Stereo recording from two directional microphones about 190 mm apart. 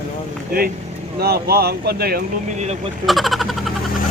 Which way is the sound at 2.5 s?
35° right (ahead or behind).